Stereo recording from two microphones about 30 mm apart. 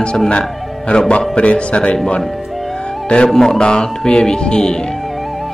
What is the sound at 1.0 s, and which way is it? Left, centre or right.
Speech, left.